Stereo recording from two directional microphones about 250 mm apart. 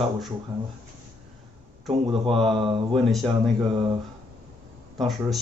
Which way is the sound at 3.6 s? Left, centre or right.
Right.